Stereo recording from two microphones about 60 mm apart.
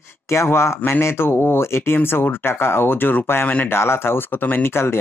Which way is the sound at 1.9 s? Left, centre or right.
Left.